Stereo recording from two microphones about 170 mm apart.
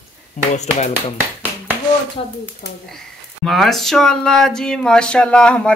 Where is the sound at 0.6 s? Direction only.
40° left (ahead or behind).